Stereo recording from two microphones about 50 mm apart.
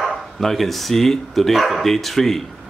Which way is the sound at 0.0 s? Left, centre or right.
Centre.